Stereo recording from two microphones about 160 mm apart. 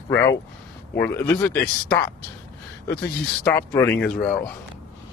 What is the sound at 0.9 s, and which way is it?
Speech, 15° left (ahead or behind).